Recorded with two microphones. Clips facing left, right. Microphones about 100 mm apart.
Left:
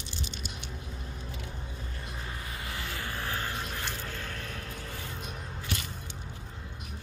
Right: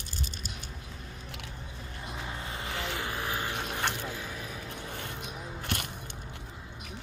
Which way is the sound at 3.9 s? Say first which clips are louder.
Right 2 dB; 10° right (ahead or behind).